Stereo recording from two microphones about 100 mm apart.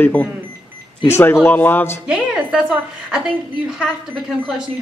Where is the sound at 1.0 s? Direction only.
25° left (ahead or behind).